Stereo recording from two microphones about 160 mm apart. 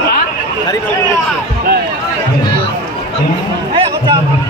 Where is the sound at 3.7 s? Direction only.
30° right (ahead or behind).